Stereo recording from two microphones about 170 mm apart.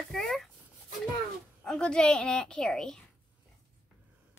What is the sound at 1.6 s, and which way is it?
Speech, 5° left (ahead or behind).